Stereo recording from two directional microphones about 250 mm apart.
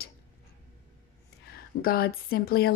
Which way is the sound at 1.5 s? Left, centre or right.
Left.